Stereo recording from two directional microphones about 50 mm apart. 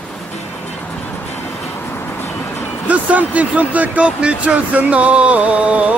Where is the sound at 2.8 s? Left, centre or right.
Right.